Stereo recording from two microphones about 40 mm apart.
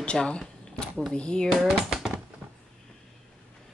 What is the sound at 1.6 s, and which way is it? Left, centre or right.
Speech, centre.